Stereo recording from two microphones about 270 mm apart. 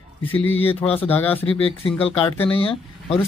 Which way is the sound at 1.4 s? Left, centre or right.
Left.